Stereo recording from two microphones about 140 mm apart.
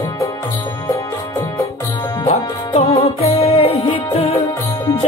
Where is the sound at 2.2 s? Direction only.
50° left (ahead or behind).